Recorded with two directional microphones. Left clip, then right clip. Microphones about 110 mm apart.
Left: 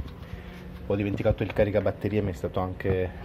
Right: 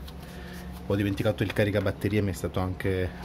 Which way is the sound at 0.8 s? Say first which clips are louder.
Left 1 dB; 25° right (ahead or behind).